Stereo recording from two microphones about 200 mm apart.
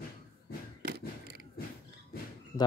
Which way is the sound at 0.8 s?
55° right (ahead or behind).